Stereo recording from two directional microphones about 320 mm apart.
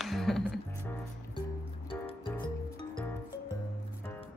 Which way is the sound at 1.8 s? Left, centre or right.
Centre.